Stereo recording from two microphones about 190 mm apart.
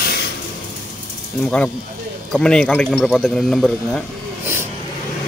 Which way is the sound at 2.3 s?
5° left (ahead or behind).